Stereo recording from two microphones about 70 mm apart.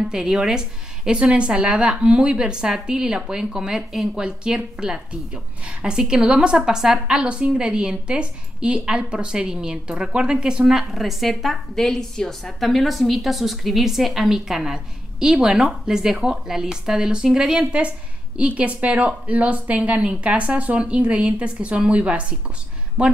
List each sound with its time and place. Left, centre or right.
0.1 s a woman's voice: centre